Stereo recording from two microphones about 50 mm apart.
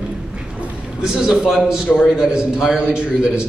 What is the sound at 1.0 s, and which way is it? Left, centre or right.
A man's voice, centre.